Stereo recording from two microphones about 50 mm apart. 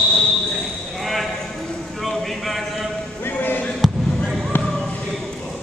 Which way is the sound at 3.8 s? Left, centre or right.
Centre.